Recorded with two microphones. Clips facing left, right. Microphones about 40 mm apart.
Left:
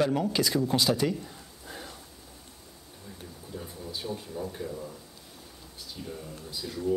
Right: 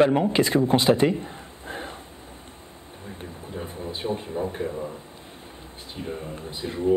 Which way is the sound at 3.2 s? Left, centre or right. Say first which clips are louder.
Right 6 dB; right.